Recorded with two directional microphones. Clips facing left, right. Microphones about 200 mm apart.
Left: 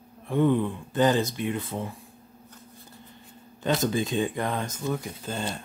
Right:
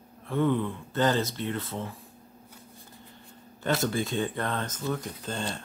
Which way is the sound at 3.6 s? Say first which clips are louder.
Left 2 dB; 15° left (ahead or behind).